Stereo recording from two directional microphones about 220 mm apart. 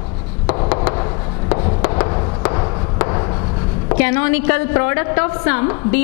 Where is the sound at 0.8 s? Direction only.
15° left (ahead or behind).